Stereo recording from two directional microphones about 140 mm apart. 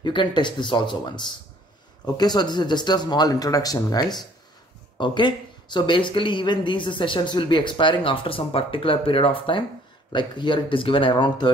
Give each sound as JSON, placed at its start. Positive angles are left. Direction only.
{"t": 0.0, "sound": "speech", "side_deg": 35}